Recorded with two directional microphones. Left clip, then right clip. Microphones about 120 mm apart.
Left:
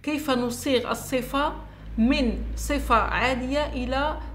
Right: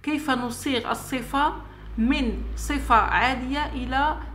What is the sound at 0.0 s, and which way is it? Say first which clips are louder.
A woman's voice: even; 20° left (ahead or behind).